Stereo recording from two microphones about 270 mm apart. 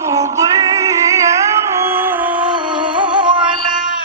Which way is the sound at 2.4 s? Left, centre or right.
Centre.